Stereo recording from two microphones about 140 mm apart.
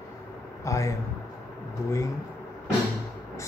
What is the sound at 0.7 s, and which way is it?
Speech, 20° left (ahead or behind).